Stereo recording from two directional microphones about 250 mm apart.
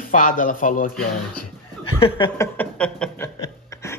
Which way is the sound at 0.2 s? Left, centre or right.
Left.